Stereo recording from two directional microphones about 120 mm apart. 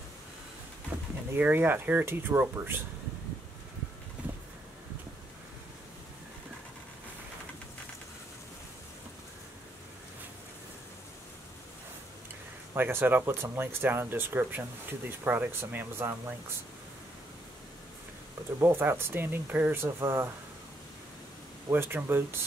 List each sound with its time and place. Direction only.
1.3 s speech: 15° right (ahead or behind)
12.7 s speech: 15° right (ahead or behind)
18.6 s speech: 20° right (ahead or behind)
21.6 s speech: 20° right (ahead or behind)